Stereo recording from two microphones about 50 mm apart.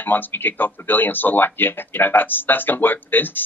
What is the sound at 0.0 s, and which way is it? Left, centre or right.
Speech, left.